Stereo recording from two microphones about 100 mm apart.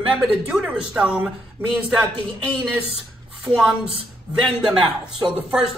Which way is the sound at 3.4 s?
Centre (ahead or behind).